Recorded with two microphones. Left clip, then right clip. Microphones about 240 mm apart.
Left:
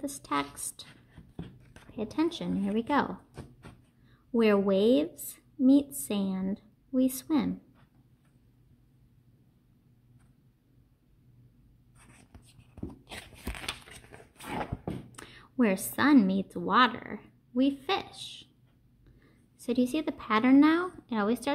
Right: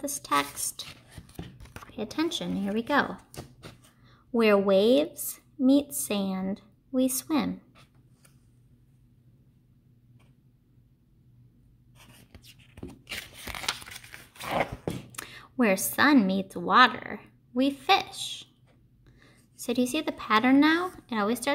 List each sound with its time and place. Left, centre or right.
0.0 s a woman's voice: centre
1.9 s a woman's voice: centre
13.1 s a sound: centre
15.0 s a woman's voice: centre